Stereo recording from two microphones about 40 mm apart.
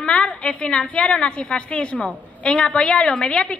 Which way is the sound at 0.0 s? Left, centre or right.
Left.